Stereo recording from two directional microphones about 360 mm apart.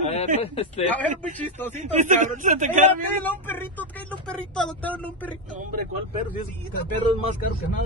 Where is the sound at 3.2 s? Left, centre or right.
Centre.